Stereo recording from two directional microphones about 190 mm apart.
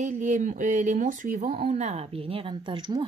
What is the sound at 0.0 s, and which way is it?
Speech, 40° right (ahead or behind).